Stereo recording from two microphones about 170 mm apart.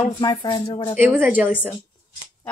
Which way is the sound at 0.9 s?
10° right (ahead or behind).